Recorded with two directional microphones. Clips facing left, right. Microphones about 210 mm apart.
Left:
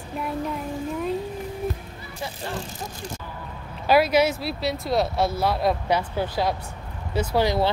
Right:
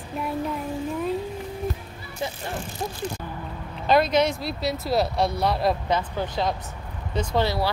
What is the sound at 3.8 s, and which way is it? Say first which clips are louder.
Speech: left 1 dB; 10° left (ahead or behind).